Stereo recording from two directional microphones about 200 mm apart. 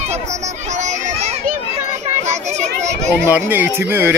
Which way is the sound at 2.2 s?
35° right (ahead or behind).